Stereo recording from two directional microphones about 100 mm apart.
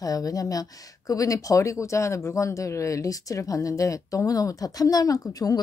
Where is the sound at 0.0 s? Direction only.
35° left (ahead or behind).